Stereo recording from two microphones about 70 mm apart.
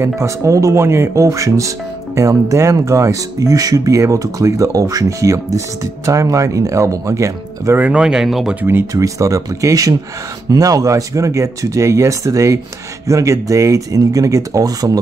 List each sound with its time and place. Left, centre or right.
0.0 s speech: right
7.7 s speech: right
8.0 s speech: centre
8.5 s speech: right
8.9 s speech: right